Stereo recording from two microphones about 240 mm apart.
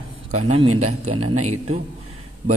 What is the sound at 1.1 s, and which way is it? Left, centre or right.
Speech, right.